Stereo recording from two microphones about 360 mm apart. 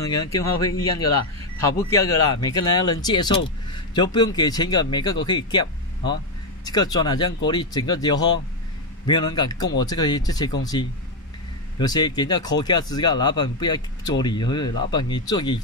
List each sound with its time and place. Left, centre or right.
0.5 s speech: left
1.9 s speech: centre